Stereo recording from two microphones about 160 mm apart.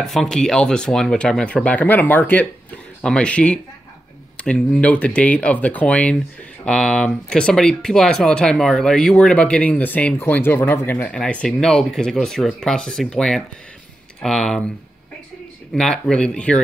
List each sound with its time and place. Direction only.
0.0 s speech: 5° left (ahead or behind)
15.7 s speech: 5° left (ahead or behind)